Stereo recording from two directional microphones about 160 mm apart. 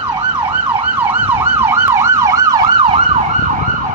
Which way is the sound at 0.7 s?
10° right (ahead or behind).